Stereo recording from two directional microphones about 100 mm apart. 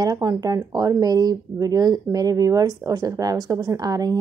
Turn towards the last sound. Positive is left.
turn(degrees=-35)  # may be behind; listen again after turning